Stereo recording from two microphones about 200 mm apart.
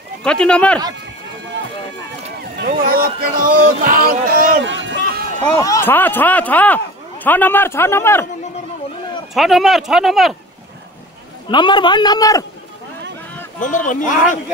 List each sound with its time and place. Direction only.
0.2 s speech: 5° left (ahead or behind)
2.7 s speech: 45° right (ahead or behind)
4.6 s a sound: 65° right (ahead or behind)
5.6 s speech: 15° left (ahead or behind)
9.3 s speech: centre (ahead or behind)
11.5 s a man's voice: 25° left (ahead or behind)
13.6 s speech: 40° left (ahead or behind)